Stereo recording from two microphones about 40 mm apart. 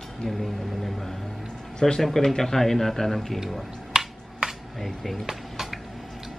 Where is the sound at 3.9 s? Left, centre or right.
Centre.